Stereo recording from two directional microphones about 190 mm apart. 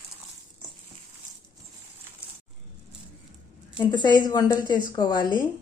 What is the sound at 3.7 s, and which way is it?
A woman's voice, 25° left (ahead or behind).